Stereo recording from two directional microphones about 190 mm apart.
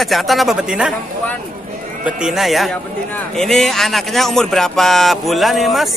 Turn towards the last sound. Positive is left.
turn(degrees=0)  # may be behind; listen again after turning